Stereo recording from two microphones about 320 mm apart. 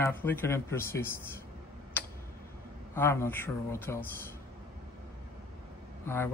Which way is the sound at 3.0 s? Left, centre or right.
Centre.